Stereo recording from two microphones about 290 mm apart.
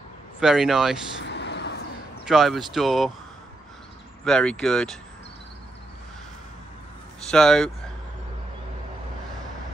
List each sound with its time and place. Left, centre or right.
0.4 s speech: centre
1.2 s a sound: left
2.2 s speech: centre
4.2 s speech: centre
7.2 s speech: centre